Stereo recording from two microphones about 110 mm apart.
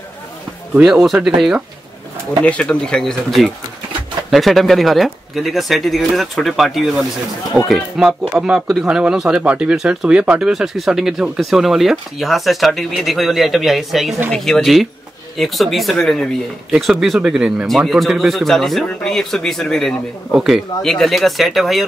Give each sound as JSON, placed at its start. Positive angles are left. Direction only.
{"t": 0.7, "sound": "speech", "side_deg": -5}
{"t": 2.4, "sound": "speech", "side_deg": 10}